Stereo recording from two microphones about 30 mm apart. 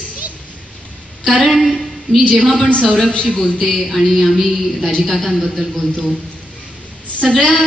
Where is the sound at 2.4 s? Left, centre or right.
Left.